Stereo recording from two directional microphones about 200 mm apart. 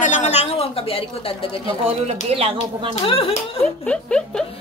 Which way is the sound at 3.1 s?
30° left (ahead or behind).